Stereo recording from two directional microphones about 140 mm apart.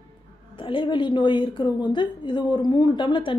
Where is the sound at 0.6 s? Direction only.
35° left (ahead or behind).